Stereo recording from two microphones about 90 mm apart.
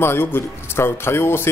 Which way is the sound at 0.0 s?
25° left (ahead or behind).